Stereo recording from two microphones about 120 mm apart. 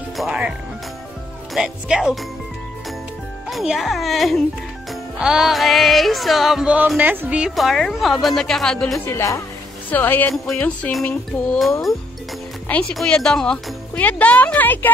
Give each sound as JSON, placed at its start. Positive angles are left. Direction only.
{"t": 0.2, "sound": "a woman's voice", "side_deg": -5}
{"t": 3.4, "sound": "a woman's voice", "side_deg": 0}
{"t": 9.0, "sound": "a woman's voice", "side_deg": 20}
{"t": 10.3, "sound": "a woman's voice", "side_deg": 5}
{"t": 12.9, "sound": "speech", "side_deg": 5}